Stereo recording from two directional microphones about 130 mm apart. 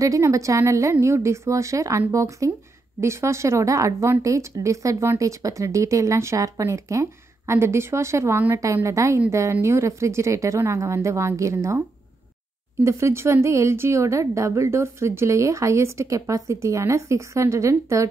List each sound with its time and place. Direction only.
0.0 s a woman's voice: 25° right (ahead or behind)
12.8 s a woman's voice: 20° right (ahead or behind)